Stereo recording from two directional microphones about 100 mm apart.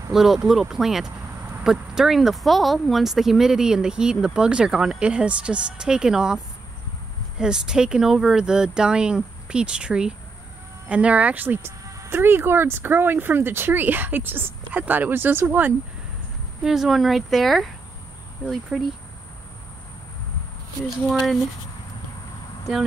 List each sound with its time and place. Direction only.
0.1 s speech: 5° right (ahead or behind); by 15.7 s 20° right (ahead or behind)
16.6 s speech: 5° right (ahead or behind)
18.7 s speech: centre (ahead or behind)
21.1 s speech: centre (ahead or behind)